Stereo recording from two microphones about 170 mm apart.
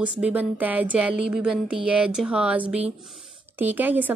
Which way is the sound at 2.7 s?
10° right (ahead or behind).